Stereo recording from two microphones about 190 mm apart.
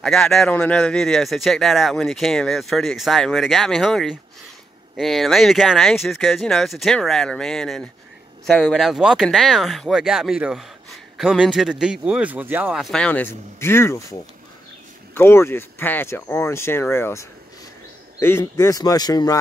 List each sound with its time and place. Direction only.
0.0 s speech: 5° left (ahead or behind)
15.1 s speech: 10° left (ahead or behind)